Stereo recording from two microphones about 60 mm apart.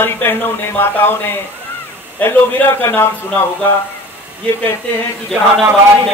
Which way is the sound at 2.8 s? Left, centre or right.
Left.